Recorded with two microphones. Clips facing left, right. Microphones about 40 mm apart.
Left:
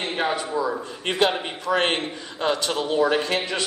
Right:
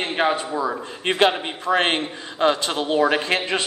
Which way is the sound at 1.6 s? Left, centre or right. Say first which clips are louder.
Right 2 dB; right.